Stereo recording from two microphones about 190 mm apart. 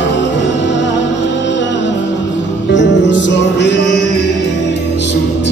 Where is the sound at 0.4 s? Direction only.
70° left (ahead or behind).